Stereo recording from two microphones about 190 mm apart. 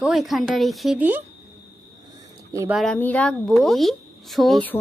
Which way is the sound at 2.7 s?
5° left (ahead or behind).